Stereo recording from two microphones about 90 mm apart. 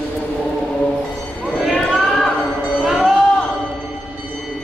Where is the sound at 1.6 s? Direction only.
Centre (ahead or behind).